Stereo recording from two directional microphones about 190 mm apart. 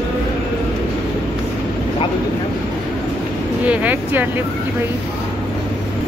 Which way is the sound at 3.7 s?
10° right (ahead or behind).